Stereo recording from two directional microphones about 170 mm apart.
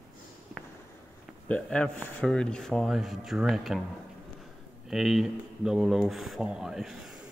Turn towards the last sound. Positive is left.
turn(degrees=0)  # may be behind; listen again after turning